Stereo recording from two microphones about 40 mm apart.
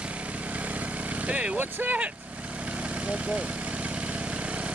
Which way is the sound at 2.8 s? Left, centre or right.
Right.